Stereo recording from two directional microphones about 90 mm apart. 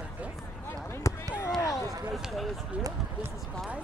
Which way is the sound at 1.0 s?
35° left (ahead or behind).